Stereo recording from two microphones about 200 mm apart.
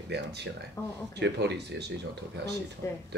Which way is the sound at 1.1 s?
60° right (ahead or behind).